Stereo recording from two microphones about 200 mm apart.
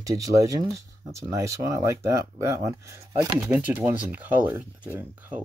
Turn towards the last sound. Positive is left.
turn(degrees=-10)  # may be behind; listen again after turning